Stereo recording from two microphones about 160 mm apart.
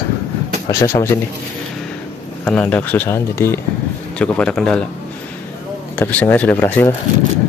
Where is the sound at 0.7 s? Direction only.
20° left (ahead or behind).